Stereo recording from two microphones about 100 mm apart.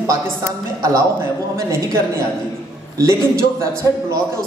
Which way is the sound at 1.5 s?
30° right (ahead or behind).